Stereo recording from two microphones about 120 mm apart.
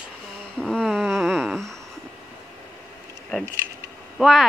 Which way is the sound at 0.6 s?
10° left (ahead or behind).